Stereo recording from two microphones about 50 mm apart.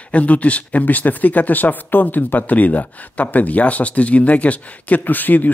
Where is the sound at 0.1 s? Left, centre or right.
Left.